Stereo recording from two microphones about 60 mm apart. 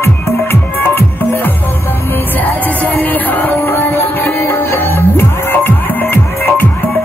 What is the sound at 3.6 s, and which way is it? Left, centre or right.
Music, left.